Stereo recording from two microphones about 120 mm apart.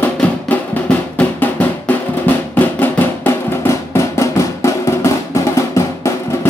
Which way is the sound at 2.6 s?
15° left (ahead or behind).